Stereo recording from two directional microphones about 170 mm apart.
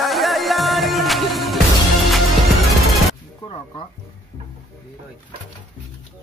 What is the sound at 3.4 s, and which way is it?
Whip, 30° left (ahead or behind).